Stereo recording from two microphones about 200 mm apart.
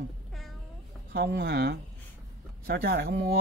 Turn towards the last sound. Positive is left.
turn(degrees=-55)  # may be behind; listen again after turning